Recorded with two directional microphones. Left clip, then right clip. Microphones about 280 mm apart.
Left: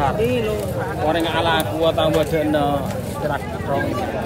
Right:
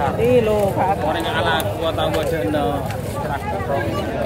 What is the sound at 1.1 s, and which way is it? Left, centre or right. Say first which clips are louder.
A man's voice: left 1 dB; left.